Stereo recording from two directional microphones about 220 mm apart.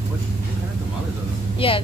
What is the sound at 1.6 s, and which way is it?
Vehicle, 25° left (ahead or behind).